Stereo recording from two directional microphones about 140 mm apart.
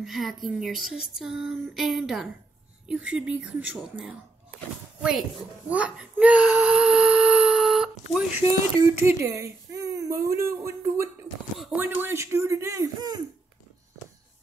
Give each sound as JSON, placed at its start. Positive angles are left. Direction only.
{"t": 0.0, "sound": "a sound", "side_deg": 0}
{"t": 2.9, "sound": "speech", "side_deg": -5}
{"t": 5.7, "sound": "speech", "side_deg": -10}
{"t": 8.4, "sound": "speech", "side_deg": -20}
{"t": 11.5, "sound": "a sound", "side_deg": 0}
{"t": 11.8, "sound": "speech", "side_deg": -15}